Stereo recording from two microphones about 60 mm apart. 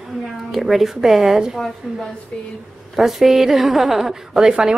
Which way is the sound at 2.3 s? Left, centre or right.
Left.